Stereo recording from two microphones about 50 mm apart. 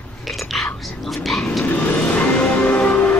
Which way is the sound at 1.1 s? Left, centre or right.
Centre.